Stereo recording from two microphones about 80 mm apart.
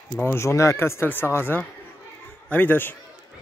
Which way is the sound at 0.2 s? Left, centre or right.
Left.